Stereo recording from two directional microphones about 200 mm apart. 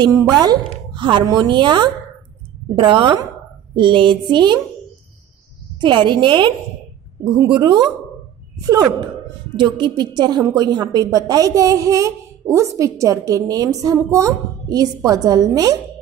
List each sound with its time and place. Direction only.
0.0 s a woman's voice: 20° right (ahead or behind)
5.8 s a woman's voice: 25° right (ahead or behind)